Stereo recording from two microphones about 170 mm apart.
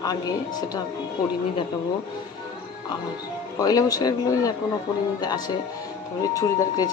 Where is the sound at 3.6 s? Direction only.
20° left (ahead or behind).